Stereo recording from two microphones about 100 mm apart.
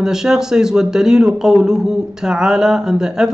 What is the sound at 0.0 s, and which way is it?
Speech, 5° right (ahead or behind).